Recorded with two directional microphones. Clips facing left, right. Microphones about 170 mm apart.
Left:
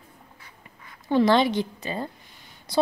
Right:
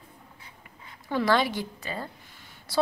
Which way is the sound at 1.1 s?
25° left (ahead or behind).